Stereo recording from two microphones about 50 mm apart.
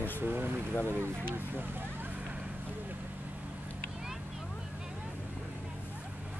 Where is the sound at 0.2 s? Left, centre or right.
Right.